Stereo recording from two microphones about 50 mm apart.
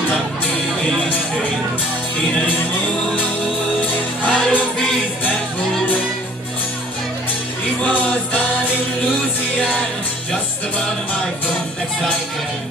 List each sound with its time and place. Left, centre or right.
3.8 s music: left
7.8 s music: left